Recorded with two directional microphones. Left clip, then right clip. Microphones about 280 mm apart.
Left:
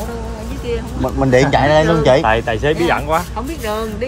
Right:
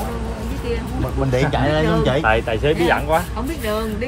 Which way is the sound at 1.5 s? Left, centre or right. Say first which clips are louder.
Left 6 dB; left.